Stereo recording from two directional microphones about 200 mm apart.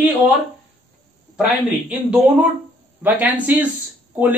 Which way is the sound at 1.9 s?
5° right (ahead or behind).